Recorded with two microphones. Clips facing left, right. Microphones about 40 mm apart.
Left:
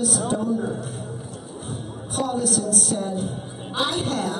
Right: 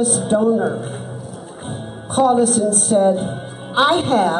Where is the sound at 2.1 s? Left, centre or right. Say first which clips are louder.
Right 10 dB; right.